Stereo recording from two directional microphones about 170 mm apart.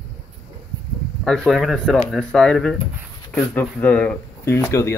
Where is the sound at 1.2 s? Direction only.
5° left (ahead or behind).